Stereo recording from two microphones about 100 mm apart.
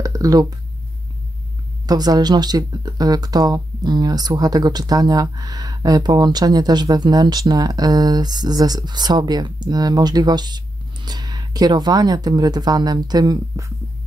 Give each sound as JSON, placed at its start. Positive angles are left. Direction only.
{"t": 0.0, "sound": "speech", "side_deg": -35}
{"t": 1.9, "sound": "speech", "side_deg": -40}